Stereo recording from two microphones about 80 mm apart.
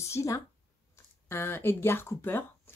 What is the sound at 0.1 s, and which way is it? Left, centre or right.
Speech, left.